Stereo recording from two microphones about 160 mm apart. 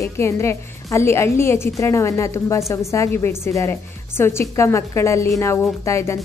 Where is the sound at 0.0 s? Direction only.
15° left (ahead or behind).